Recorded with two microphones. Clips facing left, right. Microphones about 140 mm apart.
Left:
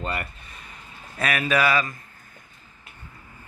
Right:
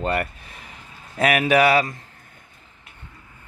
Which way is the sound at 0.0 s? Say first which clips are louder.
Right 7 dB; 60° right (ahead or behind).